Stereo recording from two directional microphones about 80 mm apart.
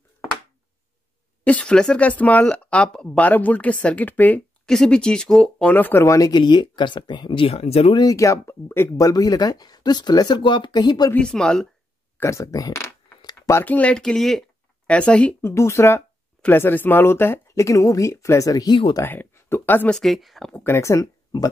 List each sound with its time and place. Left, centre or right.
1.4 s speech: centre
4.6 s speech: centre
5.7 s speech: left
6.0 s speech: left
6.3 s speech: left
8.0 s speech: left
8.9 s speech: left
11.1 s speech: centre
12.2 s speech: left
13.7 s speech: centre
15.4 s speech: left
19.0 s speech: left
19.9 s speech: centre
20.5 s speech: left